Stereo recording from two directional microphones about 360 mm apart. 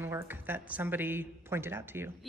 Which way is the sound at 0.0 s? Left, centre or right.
Centre.